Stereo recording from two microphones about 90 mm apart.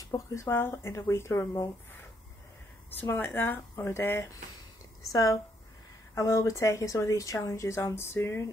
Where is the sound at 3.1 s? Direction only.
25° left (ahead or behind).